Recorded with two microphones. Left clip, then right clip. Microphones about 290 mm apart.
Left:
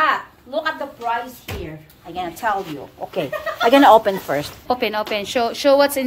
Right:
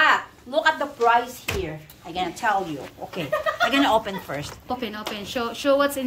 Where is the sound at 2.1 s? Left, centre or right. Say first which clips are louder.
Left 1 dB; centre.